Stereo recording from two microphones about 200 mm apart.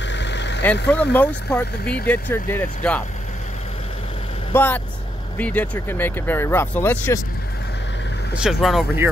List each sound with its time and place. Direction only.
0.1 s vehicle: 60° left (ahead or behind)
0.8 s speech: 5° left (ahead or behind)
4.6 s speech: 10° left (ahead or behind)
8.4 s speech: centre (ahead or behind)